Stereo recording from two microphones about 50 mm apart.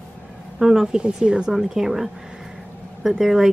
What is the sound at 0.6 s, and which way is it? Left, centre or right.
Speech, centre.